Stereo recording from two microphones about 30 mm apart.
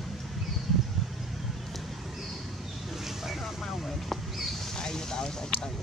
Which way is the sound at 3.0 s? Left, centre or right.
Centre.